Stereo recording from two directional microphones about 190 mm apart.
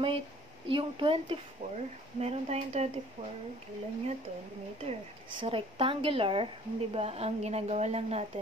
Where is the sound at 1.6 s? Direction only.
35° right (ahead or behind).